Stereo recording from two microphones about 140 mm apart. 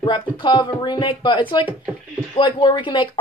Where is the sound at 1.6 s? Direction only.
5° right (ahead or behind).